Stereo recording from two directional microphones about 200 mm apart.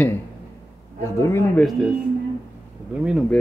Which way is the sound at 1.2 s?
15° left (ahead or behind).